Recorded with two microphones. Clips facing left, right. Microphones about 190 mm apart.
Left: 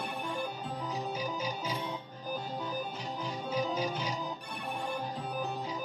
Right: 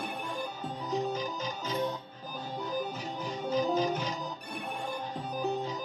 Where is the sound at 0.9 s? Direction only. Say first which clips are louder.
Right 6 dB; 10° left (ahead or behind).